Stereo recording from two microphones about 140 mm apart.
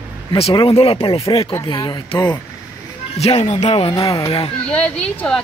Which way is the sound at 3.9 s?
25° left (ahead or behind).